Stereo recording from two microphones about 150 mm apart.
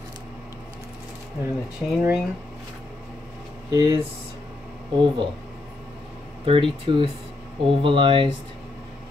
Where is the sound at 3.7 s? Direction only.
25° right (ahead or behind).